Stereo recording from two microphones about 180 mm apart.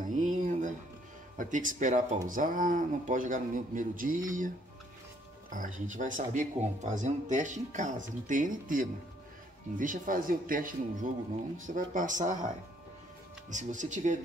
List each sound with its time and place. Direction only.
0.0 s music: 45° right (ahead or behind)
1.4 s speech: 45° right (ahead or behind)
5.5 s speech: 45° right (ahead or behind)
13.5 s speech: 45° right (ahead or behind)